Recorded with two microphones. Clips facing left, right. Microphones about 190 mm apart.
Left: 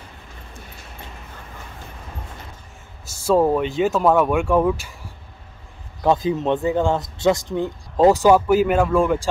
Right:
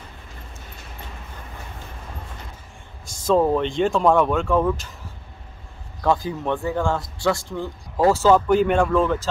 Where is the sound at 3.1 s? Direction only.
10° left (ahead or behind).